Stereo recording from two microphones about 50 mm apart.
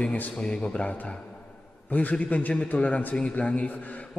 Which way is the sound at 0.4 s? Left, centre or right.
Centre.